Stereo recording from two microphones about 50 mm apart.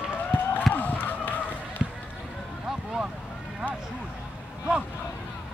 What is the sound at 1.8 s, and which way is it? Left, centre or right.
Basketball bounce, centre.